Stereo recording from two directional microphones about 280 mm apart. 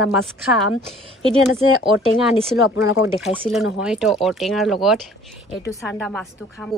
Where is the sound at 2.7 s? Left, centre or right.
Left.